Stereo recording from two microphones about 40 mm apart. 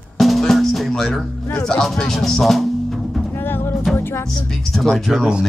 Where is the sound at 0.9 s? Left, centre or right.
Centre.